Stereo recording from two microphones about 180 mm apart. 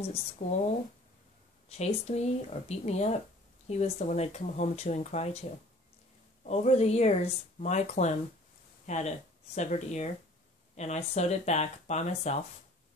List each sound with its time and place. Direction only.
0.0 s speech: 35° left (ahead or behind)
1.7 s speech: 35° left (ahead or behind)
6.4 s speech: 35° left (ahead or behind)